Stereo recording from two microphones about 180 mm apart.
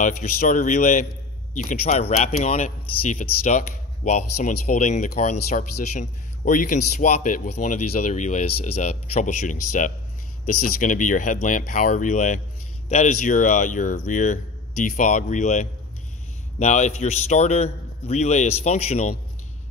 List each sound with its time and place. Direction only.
0.0 s a man's voice: 45° left (ahead or behind)